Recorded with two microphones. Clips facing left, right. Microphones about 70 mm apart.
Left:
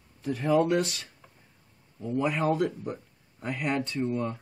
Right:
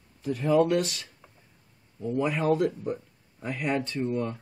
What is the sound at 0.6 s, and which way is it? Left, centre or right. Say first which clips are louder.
Speech: even; centre.